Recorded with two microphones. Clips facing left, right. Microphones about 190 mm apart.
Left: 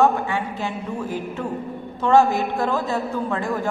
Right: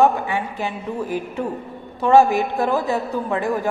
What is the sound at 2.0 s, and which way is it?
A woman's voice, 15° right (ahead or behind).